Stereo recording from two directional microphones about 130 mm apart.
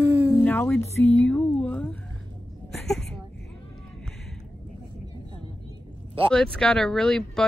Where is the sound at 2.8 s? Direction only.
5° left (ahead or behind).